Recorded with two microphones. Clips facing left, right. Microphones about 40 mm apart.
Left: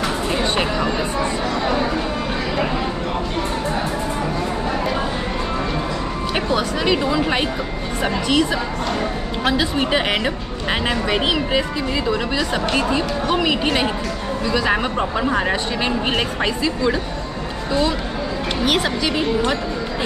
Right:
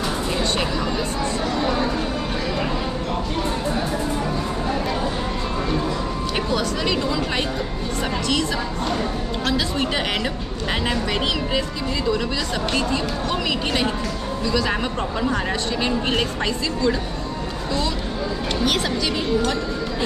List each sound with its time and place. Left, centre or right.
0.4 s a sound: left
6.5 s speech: centre
18.6 s speech: centre